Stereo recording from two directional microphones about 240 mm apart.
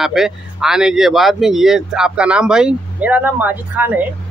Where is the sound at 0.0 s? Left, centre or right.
Centre.